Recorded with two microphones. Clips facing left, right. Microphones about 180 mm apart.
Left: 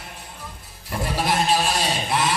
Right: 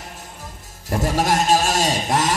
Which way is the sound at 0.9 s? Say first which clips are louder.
Right 4 dB; 45° right (ahead or behind).